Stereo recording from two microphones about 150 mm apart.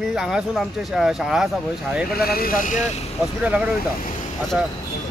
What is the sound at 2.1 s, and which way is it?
Speech, 90° left.